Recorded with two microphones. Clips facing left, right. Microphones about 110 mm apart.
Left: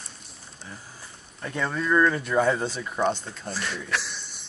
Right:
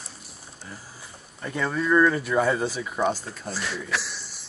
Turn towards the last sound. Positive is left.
turn(degrees=0)  # may be behind; listen again after turning